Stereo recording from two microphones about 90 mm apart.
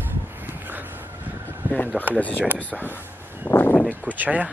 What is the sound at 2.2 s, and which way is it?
Speech, 15° left (ahead or behind).